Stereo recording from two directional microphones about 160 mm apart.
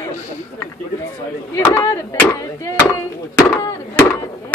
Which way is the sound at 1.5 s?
15° left (ahead or behind).